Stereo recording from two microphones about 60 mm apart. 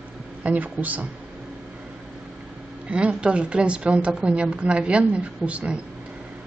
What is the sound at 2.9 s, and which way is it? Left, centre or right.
Speech, centre.